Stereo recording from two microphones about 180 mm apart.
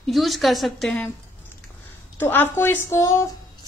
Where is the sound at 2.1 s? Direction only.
10° left (ahead or behind).